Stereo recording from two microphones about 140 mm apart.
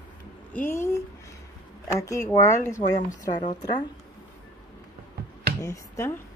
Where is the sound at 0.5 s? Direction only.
15° left (ahead or behind).